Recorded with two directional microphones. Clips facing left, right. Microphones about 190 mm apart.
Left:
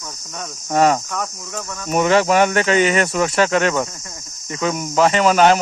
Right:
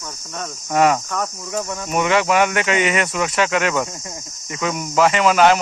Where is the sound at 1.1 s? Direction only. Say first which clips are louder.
Right 2 dB; centre (ahead or behind).